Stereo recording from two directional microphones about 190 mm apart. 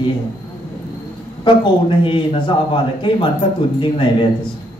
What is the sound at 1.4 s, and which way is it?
A man's voice, 25° left (ahead or behind).